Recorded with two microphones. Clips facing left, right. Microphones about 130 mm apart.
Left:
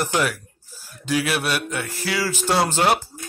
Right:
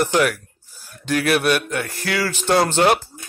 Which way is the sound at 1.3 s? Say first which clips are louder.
Right 5 dB; 5° left (ahead or behind).